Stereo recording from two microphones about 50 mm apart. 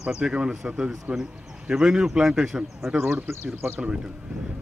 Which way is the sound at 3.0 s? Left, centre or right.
Right.